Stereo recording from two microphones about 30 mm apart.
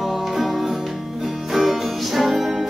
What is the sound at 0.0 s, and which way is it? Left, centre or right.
Music, centre.